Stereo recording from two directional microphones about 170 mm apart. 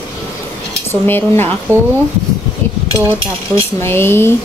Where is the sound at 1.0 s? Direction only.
10° left (ahead or behind).